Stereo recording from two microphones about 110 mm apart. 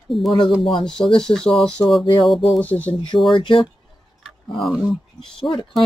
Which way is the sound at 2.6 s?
15° left (ahead or behind).